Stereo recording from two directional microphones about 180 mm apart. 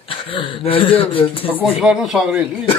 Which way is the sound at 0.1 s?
30° left (ahead or behind).